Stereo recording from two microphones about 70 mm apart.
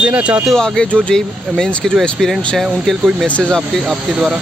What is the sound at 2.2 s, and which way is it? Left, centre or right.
Speech, centre.